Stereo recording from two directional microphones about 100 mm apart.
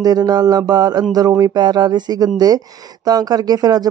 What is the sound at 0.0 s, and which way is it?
Speech, 40° right (ahead or behind).